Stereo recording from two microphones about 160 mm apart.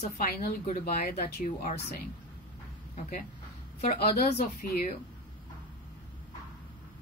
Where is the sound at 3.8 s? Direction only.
80° left.